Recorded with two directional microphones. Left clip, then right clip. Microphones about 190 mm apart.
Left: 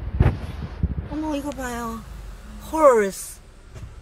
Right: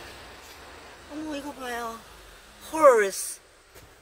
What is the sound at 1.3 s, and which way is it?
A woman's voice, centre (ahead or behind).